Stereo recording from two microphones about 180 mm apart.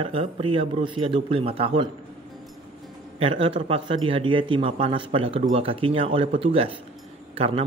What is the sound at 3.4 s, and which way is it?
A man's voice, 30° right (ahead or behind).